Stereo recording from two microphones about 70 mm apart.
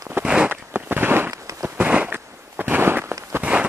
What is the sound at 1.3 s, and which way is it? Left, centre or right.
Firecracker, right.